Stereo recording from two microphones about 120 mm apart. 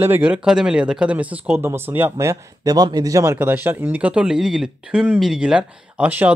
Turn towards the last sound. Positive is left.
turn(degrees=-15)  # may be behind; listen again after turning